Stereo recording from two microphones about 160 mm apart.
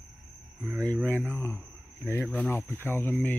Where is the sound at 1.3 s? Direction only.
15° left (ahead or behind).